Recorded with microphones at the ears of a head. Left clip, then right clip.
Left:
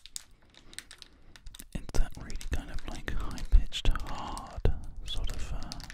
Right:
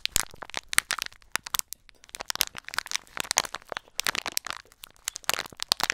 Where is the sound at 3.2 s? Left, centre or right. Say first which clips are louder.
Right 16 dB; right.